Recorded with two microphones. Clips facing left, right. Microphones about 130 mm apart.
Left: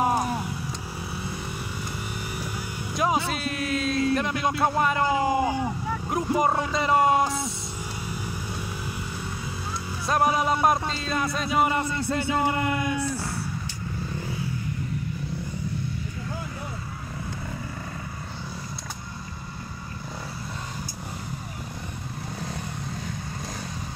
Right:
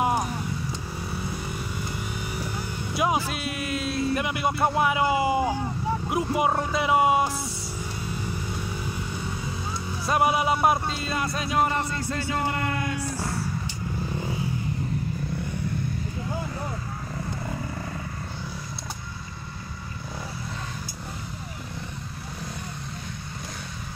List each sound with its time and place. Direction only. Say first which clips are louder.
2.9 s speech: left 1 dB; 5° right (ahead or behind)
10.0 s speech: even; 5° right (ahead or behind)
12.1 s speech: left 5 dB; 20° left (ahead or behind)